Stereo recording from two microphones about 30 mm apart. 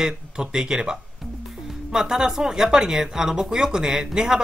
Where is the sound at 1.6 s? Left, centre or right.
Centre.